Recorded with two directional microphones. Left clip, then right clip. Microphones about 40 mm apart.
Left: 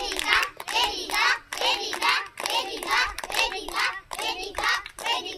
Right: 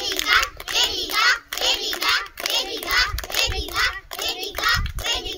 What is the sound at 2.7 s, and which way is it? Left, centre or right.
Child singing, centre.